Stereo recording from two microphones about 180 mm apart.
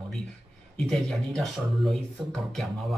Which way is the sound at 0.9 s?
Centre (ahead or behind).